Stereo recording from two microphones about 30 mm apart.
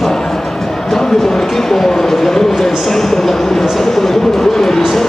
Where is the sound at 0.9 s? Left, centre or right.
Centre.